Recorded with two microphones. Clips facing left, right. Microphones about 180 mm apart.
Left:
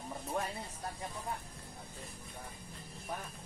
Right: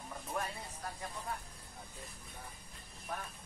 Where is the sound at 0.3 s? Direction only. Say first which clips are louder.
Left 2 dB; 25° left (ahead or behind).